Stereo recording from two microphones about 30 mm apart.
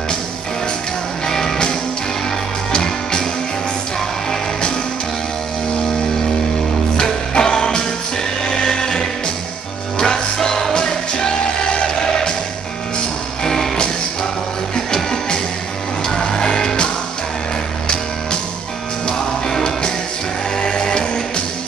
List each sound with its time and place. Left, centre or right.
2.7 s music: left
7.0 s music: centre
8.5 s a sound: centre
9.9 s music: left
14.9 s music: left
20.5 s music: left